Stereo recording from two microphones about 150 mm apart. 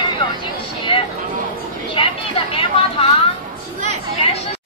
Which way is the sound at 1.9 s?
35° left (ahead or behind).